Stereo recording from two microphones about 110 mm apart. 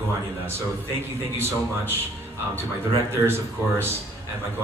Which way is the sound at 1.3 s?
20° right (ahead or behind).